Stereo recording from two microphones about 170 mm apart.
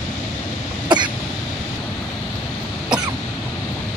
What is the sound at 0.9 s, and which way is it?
Cough, 25° right (ahead or behind).